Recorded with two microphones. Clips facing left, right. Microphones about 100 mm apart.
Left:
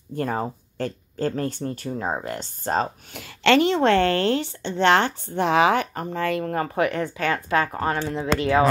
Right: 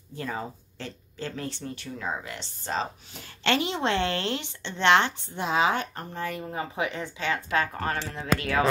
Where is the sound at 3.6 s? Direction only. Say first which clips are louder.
Left 8 dB; 55° left (ahead or behind).